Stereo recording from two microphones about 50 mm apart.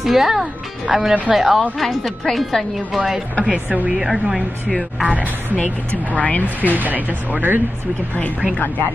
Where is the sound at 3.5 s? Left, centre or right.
Right.